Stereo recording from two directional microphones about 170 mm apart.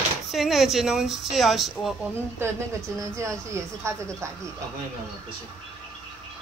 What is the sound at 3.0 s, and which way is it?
A woman's voice, 15° right (ahead or behind).